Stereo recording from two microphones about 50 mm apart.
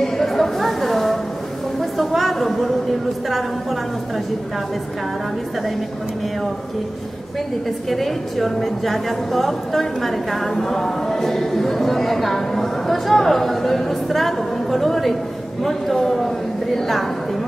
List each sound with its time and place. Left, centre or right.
0.0 s chatter: centre
1.8 s a sound: centre
7.9 s a woman's voice: centre